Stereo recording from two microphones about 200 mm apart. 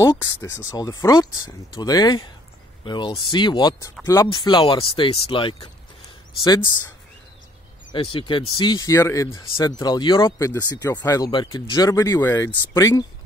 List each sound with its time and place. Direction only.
0.0 s speech: 15° left (ahead or behind)
7.9 s speech: 25° left (ahead or behind)